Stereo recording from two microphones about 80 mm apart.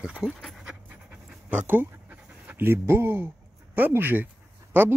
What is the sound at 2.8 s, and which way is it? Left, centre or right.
Speech, right.